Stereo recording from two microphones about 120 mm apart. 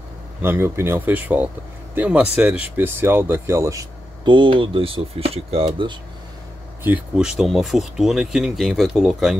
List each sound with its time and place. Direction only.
0.4 s speech: 20° right (ahead or behind)
4.2 s speech: 45° right (ahead or behind)
7.2 s speech: 5° right (ahead or behind)